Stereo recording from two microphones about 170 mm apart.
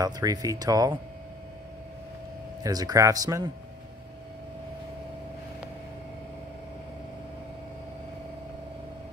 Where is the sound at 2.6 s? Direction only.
20° right (ahead or behind).